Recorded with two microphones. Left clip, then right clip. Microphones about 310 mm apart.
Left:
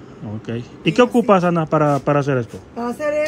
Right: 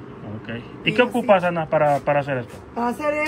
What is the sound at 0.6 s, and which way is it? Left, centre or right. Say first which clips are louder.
Speech: left 4 dB; left.